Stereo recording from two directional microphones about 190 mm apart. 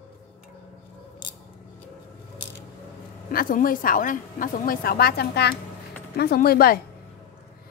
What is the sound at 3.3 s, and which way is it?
A woman's voice, 50° left (ahead or behind).